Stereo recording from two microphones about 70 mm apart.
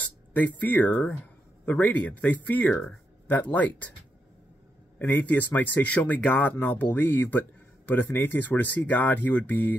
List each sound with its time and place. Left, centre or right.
0.0 s speech: left
4.9 s speech: left